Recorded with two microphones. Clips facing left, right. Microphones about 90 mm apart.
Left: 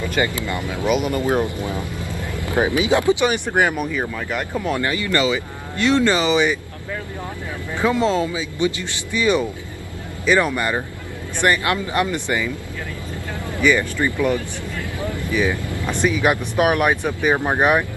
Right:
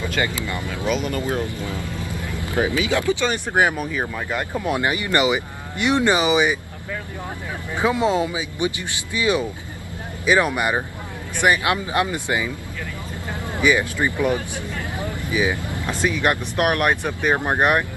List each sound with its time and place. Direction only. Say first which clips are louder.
0.5 s speech: left 3 dB; 20° left (ahead or behind)
3.4 s speech: left 1 dB; 10° right (ahead or behind)
7.7 s speech: left 1 dB; 15° right (ahead or behind)
13.6 s speech: left 1 dB; 10° right (ahead or behind)
15.0 s vehicle: left 2 dB; 15° right (ahead or behind)
15.9 s speech: left 2 dB; centre (ahead or behind)